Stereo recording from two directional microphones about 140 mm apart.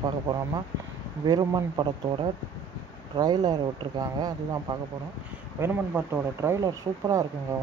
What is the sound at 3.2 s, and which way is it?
Speech, 30° right (ahead or behind).